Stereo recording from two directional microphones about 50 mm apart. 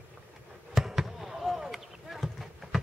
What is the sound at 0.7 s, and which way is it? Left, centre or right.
Basketball bounce, centre.